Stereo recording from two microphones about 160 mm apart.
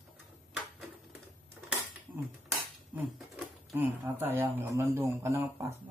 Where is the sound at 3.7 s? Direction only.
15° right (ahead or behind).